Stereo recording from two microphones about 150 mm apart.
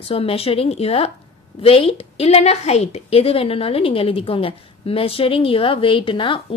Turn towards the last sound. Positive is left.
turn(degrees=35)  # may be behind; listen again after turning